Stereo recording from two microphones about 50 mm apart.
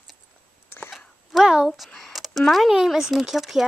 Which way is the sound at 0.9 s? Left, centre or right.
Centre.